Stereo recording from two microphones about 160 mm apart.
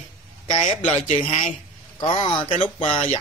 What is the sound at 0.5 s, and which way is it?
Speech, 35° left (ahead or behind).